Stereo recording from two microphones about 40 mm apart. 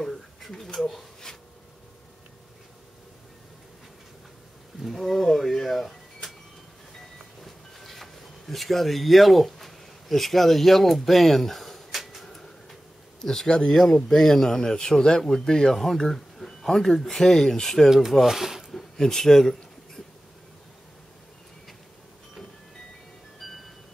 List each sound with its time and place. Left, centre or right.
0.0 s a sound: centre
0.7 s speech: centre
4.8 s a sound: centre
13.2 s speech: centre
13.5 s speech: left
13.7 s speech: centre
17.8 s speech: centre
18.7 s a sound: centre
23.4 s music: centre